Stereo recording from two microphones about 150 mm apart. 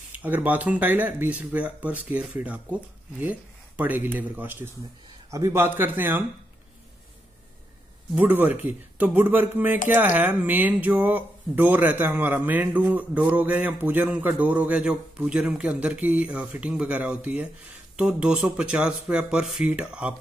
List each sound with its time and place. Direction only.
0.2 s speech: 10° right (ahead or behind)
8.1 s speech: 10° right (ahead or behind)